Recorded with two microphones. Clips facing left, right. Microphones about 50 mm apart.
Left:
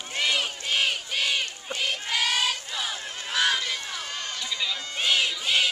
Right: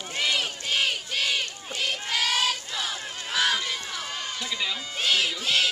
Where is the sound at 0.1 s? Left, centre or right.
Centre.